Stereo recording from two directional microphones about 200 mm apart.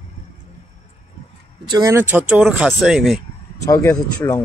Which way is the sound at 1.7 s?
15° right (ahead or behind).